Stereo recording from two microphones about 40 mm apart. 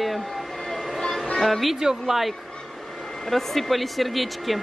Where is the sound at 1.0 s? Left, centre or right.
Centre.